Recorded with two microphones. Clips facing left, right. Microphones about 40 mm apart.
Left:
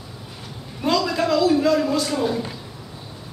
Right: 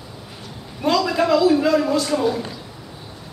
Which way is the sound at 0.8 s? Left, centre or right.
Centre.